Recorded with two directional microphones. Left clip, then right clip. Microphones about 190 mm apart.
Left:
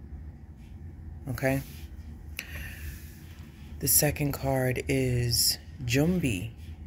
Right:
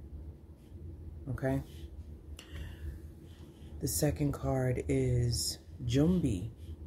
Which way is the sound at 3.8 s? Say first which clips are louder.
Left 5 dB; 5° right (ahead or behind).